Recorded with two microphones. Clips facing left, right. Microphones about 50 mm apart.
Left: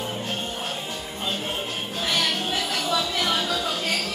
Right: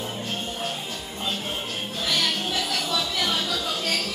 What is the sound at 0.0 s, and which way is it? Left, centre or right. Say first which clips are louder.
Music: left 1 dB; left.